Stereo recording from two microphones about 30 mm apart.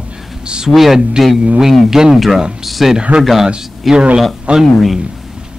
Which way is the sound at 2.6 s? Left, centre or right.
Centre.